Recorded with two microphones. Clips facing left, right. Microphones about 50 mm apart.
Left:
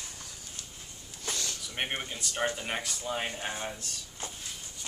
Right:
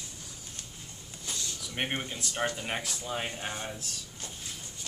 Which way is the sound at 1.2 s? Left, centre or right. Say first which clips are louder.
Left 3 dB; left.